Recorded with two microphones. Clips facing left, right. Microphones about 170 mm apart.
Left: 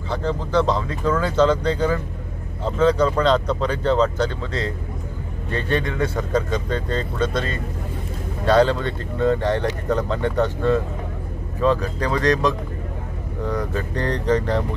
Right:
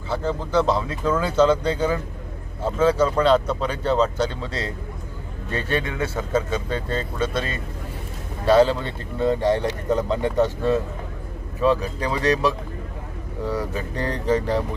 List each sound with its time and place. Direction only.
0.1 s speech: 10° right (ahead or behind)
8.5 s speech: 10° right (ahead or behind)